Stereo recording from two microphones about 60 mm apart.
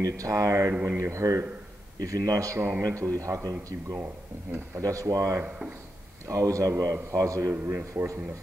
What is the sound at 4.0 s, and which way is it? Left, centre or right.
Speech, right.